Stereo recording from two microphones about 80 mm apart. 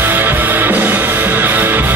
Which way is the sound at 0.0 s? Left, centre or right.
Right.